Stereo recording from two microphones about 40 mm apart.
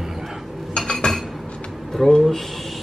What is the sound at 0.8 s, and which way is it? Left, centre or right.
Chink, centre.